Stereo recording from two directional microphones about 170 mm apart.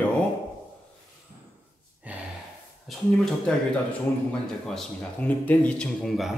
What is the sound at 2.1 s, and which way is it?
Gasp, 10° right (ahead or behind).